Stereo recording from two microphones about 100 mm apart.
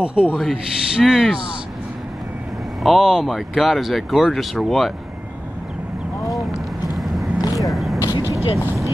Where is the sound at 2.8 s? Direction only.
Centre (ahead or behind).